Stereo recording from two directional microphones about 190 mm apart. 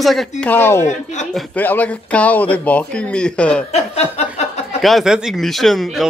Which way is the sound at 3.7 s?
35° left (ahead or behind).